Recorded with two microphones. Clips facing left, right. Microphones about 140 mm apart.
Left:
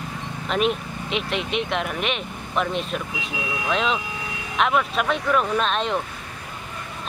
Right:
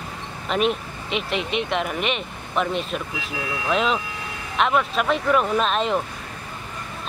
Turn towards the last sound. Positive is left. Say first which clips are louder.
# right 2 dB
turn(degrees=0)  # may be behind; listen again after turning